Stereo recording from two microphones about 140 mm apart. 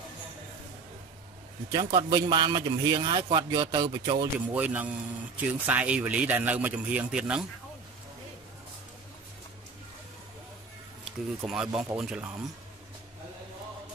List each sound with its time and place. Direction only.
1.7 s a man's voice: 30° right (ahead or behind)
4.5 s speech: 10° right (ahead or behind)
11.1 s speech: 5° right (ahead or behind)